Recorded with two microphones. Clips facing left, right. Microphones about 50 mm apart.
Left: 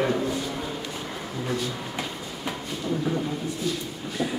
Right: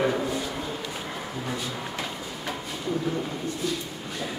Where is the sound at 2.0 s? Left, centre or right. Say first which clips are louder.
Even; centre.